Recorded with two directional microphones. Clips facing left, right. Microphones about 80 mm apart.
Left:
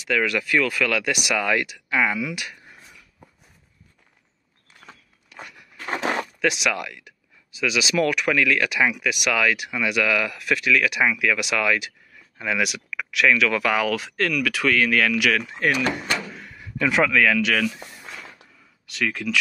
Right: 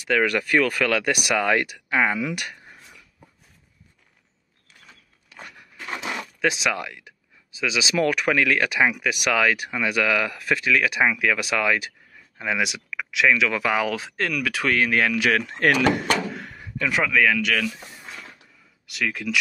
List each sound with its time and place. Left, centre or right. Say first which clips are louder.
0.1 s speech: right 1 dB; right
5.9 s a sound: left 6 dB; left
6.4 s speech: right 1 dB; right
15.4 s speech: right 3 dB; right
16.7 s speech: left 2 dB; centre
18.9 s speech: left 1 dB; centre